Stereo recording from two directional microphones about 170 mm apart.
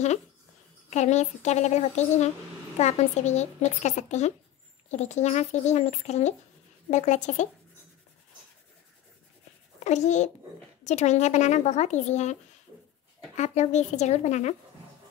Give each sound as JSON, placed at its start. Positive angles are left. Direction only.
{"t": 0.8, "sound": "speech", "side_deg": 40}
{"t": 9.8, "sound": "speech", "side_deg": 45}
{"t": 13.4, "sound": "speech", "side_deg": 40}